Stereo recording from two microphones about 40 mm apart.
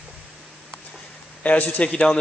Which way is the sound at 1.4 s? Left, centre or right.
Left.